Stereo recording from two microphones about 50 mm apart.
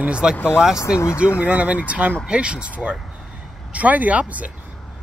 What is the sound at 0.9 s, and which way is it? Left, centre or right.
Speech, left.